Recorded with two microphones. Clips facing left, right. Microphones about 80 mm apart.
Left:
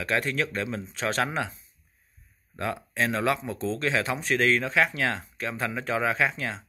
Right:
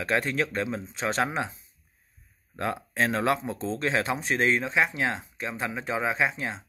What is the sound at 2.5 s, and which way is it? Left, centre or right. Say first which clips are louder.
Speech: right 1 dB; right.